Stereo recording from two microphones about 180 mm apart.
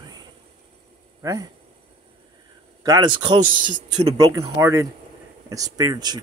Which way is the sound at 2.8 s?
25° right (ahead or behind).